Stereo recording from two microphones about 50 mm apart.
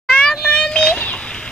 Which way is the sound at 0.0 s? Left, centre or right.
Centre.